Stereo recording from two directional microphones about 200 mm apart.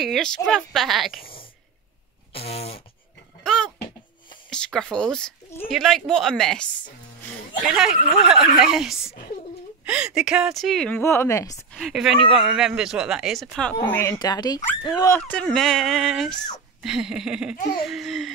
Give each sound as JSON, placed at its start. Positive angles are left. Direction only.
{"t": 0.0, "sound": "speech", "side_deg": 0}
{"t": 2.3, "sound": "a sound", "side_deg": 30}
{"t": 3.4, "sound": "a sound", "side_deg": 5}
{"t": 4.5, "sound": "speech", "side_deg": 5}
{"t": 7.6, "sound": "speech", "side_deg": 0}
{"t": 11.7, "sound": "speech", "side_deg": 0}